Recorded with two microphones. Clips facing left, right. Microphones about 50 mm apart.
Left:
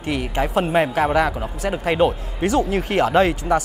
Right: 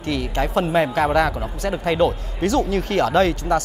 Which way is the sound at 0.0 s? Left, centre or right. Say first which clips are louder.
Even; centre.